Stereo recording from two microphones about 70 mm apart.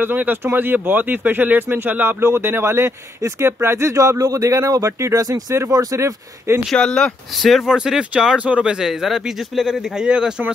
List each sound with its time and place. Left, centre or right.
0.0 s speech: right
6.7 s speech: centre
7.4 s speech: centre
7.7 s speech: centre
8.8 s speech: centre